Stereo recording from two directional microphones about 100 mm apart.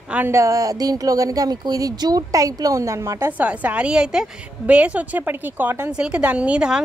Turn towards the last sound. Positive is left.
turn(degrees=-10)  # may be behind; listen again after turning